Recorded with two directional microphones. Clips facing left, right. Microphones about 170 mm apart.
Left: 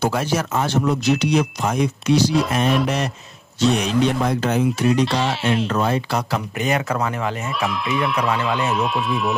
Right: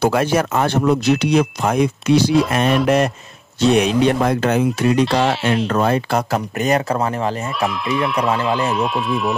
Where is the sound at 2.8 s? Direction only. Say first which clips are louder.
Right 7 dB; 55° right (ahead or behind); by 7.3 s 35° right (ahead or behind).